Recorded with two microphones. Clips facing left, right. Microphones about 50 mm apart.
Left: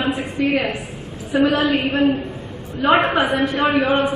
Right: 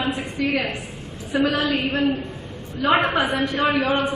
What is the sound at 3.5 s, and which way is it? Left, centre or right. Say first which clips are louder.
Speech: left 3 dB; left.